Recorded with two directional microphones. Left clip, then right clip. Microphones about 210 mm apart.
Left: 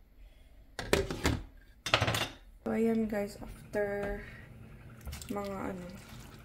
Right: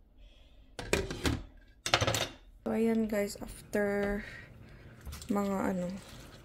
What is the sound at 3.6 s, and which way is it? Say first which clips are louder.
Speech: right 2 dB; 50° right (ahead or behind).